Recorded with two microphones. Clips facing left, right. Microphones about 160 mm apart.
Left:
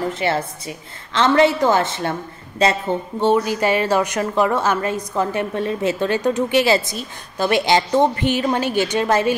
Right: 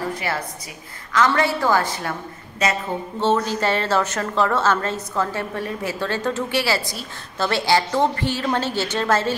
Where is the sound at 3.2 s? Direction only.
15° left (ahead or behind).